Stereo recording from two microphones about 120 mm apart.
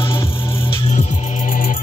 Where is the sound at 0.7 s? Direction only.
65° left (ahead or behind).